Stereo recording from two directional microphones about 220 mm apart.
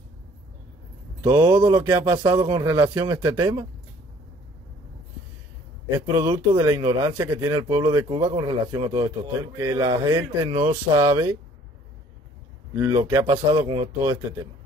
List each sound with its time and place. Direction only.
1.2 s speech: 15° right (ahead or behind)
5.9 s speech: 20° right (ahead or behind)
12.7 s speech: 15° right (ahead or behind)